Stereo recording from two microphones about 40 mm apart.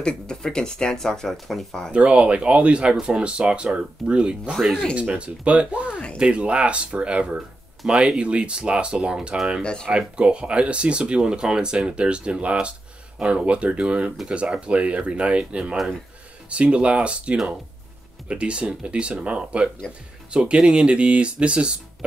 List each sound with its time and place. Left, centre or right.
0.0 s speech: left
1.3 s speech: centre
1.9 s speech: right
7.9 s speech: centre
8.2 s speech: right
9.6 s speech: left
9.9 s speech: right